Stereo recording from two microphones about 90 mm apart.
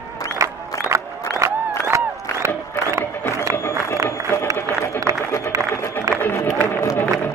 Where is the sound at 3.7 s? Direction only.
35° right (ahead or behind).